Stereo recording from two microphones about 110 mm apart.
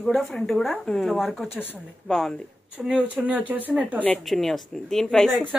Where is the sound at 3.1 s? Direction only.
15° right (ahead or behind).